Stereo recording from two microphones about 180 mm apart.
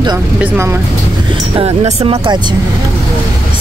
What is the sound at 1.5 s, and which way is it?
Speech, 35° right (ahead or behind).